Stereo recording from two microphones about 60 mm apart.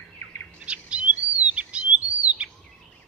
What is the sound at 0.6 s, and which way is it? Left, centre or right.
Chirp, centre.